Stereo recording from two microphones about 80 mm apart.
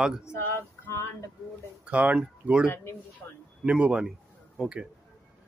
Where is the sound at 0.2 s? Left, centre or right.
Left.